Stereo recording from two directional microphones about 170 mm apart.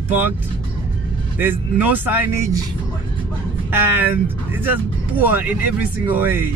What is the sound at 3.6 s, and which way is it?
Speech, 10° right (ahead or behind).